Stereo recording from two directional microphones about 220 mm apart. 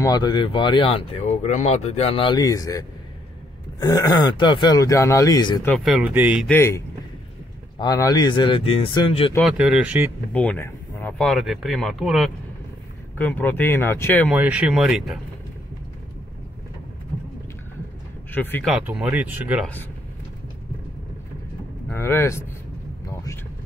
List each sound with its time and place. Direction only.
0.0 s speech: 20° left (ahead or behind)
3.8 s speech: 15° left (ahead or behind)
5.7 s speech: 5° right (ahead or behind)
6.5 s speech: 10° left (ahead or behind)
7.8 s speech: 15° left (ahead or behind)
9.4 s speech: 5° right (ahead or behind)
10.3 s speech: 5° left (ahead or behind)
14.3 s speech: 5° right (ahead or behind)
18.3 s speech: 10° left (ahead or behind)
21.8 s speech: 10° left (ahead or behind)